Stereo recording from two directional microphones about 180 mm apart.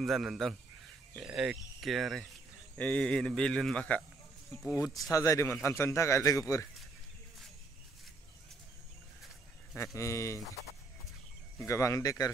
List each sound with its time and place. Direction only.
0.0 s speech: centre (ahead or behind)
4.7 s a man's voice: 20° left (ahead or behind)
9.9 s a man's voice: 15° left (ahead or behind)
11.5 s a man's voice: 15° left (ahead or behind)